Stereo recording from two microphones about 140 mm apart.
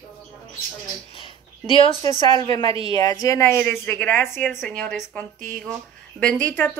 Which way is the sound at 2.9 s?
25° left (ahead or behind).